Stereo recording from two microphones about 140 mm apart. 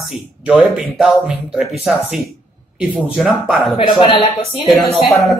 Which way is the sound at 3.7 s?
40° left (ahead or behind).